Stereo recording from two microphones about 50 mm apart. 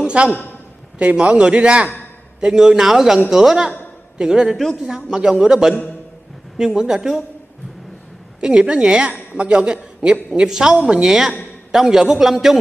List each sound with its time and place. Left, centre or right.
0.0 s a sound: right
0.9 s a man's voice: right
8.4 s a man's voice: centre